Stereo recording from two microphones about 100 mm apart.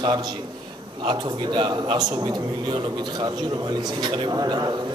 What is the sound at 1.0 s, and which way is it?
A man's voice, 50° right (ahead or behind).